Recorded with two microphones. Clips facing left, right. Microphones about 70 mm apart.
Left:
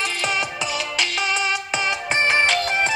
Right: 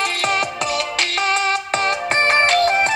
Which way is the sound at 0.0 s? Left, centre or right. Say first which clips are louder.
Right 4 dB; right.